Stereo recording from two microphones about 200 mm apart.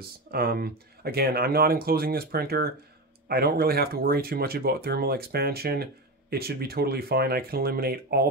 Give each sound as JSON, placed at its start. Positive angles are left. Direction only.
{"t": 0.3, "sound": "speech", "side_deg": -50}